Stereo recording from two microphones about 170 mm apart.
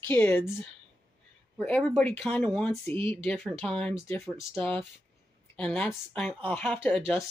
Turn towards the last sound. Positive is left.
turn(degrees=0)  # may be behind; listen again after turning